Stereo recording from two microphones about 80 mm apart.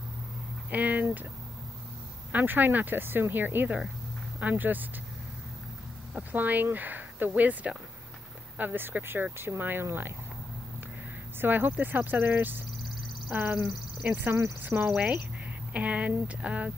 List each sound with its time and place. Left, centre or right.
0.7 s speech: centre
2.3 s speech: right
6.3 s speech: right
11.4 s speech: right
14.6 s speech: right